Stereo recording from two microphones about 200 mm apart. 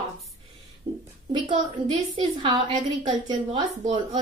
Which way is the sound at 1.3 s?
25° right (ahead or behind).